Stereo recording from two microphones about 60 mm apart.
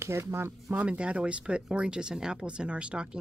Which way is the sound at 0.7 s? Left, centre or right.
Right.